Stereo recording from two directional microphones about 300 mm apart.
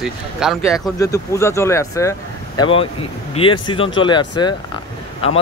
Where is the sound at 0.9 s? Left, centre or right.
Centre.